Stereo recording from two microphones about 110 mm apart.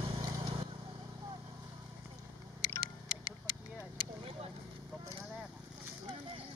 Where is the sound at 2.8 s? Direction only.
40° left (ahead or behind).